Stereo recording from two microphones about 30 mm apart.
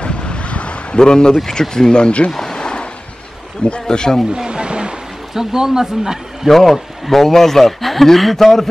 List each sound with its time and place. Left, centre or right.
0.0 s wind: left
0.9 s speech: left
2.3 s a sound: centre
3.8 s speech: left
4.5 s a sound: right
5.3 s speech: centre
6.5 s speech: centre